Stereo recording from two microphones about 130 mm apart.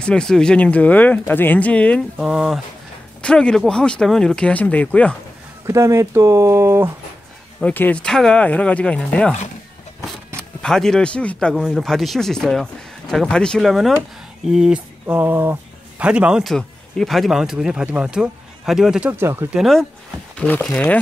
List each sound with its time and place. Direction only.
0.0 s speech: 5° left (ahead or behind)
2.1 s speech: 5° right (ahead or behind)
3.2 s speech: 5° left (ahead or behind)
5.7 s speech: 25° right (ahead or behind)
7.6 s speech: 10° left (ahead or behind); by 16.5 s 5° right (ahead or behind)
16.5 s speech: 5° left (ahead or behind)
19.1 s speech: 15° right (ahead or behind)
19.6 s speech: centre (ahead or behind)
20.3 s speech: 15° left (ahead or behind)